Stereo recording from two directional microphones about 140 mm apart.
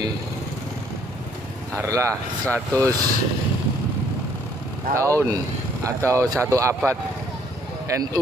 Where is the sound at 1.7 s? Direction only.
20° right (ahead or behind).